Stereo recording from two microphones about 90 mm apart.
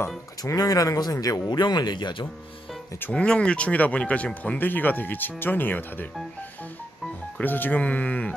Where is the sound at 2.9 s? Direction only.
20° left (ahead or behind).